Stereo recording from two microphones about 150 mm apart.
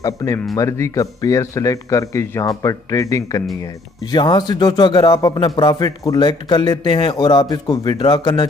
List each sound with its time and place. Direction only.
0.0 s a man's voice: 20° left (ahead or behind)